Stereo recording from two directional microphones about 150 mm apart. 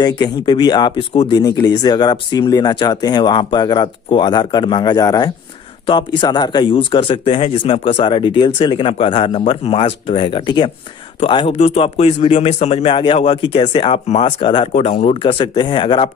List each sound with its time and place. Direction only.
0.0 s speech: 30° left (ahead or behind); by 14.3 s 50° left (ahead or behind)
14.4 s speech: 35° left (ahead or behind)
14.7 s speech: 50° left (ahead or behind); by 16.0 s 30° left (ahead or behind)